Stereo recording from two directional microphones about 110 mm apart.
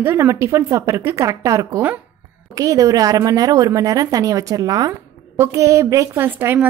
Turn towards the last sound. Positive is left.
turn(degrees=-20)  # may be behind; listen again after turning